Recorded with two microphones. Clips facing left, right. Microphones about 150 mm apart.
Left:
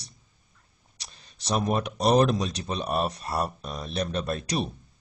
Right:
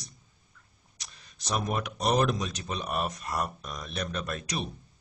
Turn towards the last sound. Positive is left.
turn(degrees=35)  # may be behind; listen again after turning